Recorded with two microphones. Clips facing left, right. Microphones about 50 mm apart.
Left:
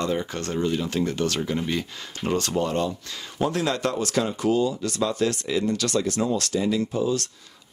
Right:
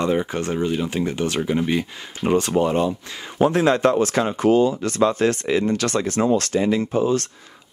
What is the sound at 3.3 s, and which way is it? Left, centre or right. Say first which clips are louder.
Speech: right 7 dB; right.